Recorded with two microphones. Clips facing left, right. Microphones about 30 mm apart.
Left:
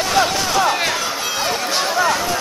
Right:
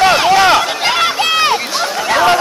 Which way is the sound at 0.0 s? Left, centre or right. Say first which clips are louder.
Right 8 dB; right.